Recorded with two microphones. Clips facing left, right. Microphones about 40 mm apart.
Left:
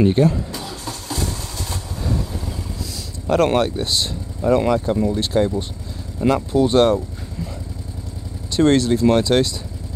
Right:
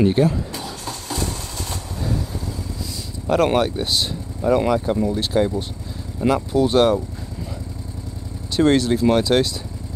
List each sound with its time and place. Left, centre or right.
0.0 s speech: centre
0.8 s vehicle: centre
2.0 s vehicle: centre
2.8 s speech: centre
8.5 s speech: centre